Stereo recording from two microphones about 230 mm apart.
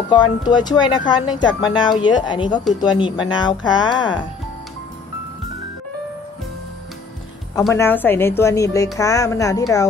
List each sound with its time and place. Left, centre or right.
0.5 s speech: centre
7.7 s a woman's voice: centre